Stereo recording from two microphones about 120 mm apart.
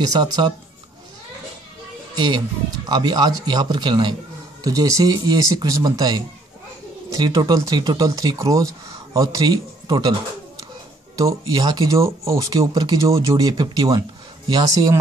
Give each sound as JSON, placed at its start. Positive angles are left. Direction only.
{"t": 0.4, "sound": "speech", "side_deg": -40}
{"t": 2.1, "sound": "speech", "side_deg": -35}
{"t": 11.1, "sound": "speech", "side_deg": -30}